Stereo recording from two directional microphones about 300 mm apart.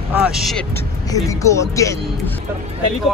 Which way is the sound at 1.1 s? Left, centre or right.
Centre.